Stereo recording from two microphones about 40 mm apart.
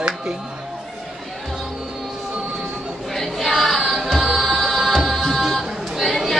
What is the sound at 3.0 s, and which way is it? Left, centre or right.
Music, centre.